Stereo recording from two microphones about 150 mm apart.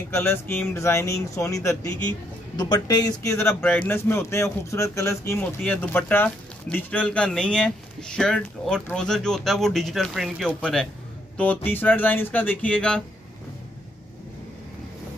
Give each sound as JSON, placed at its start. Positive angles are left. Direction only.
{"t": 0.1, "sound": "a man's voice", "side_deg": 15}